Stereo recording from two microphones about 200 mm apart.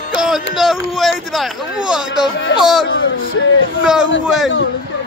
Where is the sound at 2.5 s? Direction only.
70° left (ahead or behind).